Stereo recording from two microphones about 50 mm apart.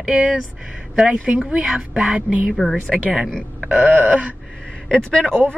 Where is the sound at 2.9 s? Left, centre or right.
Centre.